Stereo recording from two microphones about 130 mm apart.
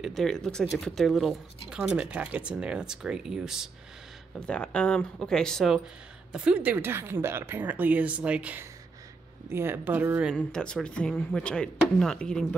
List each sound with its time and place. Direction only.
0.0 s a woman's voice: 5° left (ahead or behind)
4.4 s speech: 10° left (ahead or behind)
6.3 s a woman's voice: 5° right (ahead or behind)
10.3 s speech: 5° left (ahead or behind)